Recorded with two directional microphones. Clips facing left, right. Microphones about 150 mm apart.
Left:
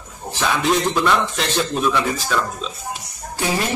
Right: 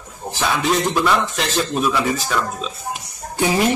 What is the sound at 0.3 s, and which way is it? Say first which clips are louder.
Speech: even; centre (ahead or behind).